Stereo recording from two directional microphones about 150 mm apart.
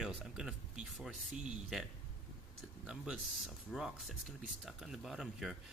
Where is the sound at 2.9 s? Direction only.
5° right (ahead or behind).